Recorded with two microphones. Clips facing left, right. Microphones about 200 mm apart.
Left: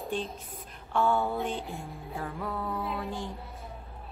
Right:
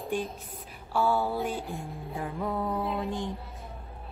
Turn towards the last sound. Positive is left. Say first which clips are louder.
# right 3 dB
turn(degrees=-15)  # may be behind; listen again after turning